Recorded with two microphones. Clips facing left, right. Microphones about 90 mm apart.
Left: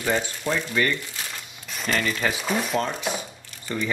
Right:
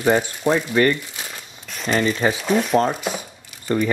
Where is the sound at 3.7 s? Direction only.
45° right (ahead or behind).